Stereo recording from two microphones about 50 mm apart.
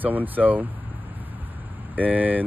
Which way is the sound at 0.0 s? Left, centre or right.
Right.